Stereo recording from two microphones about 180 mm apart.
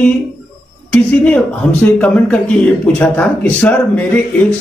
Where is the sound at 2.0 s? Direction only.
10° left (ahead or behind).